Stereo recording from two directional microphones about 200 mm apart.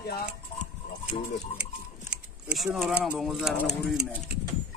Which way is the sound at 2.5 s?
5° right (ahead or behind).